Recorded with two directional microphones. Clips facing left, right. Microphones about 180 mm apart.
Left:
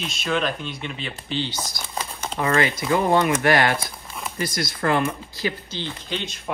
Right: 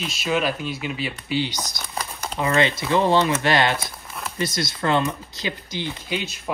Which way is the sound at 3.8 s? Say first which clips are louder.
Even; centre (ahead or behind).